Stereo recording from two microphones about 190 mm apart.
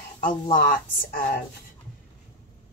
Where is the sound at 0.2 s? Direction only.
45° left (ahead or behind).